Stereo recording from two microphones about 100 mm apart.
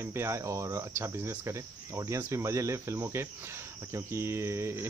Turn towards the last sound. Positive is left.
turn(degrees=-25)  # may be behind; listen again after turning